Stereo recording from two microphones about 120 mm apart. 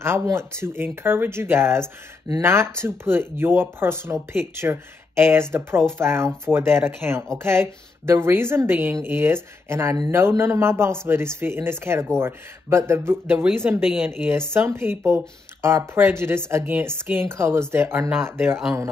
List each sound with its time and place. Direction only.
0.0 s speech: 20° right (ahead or behind)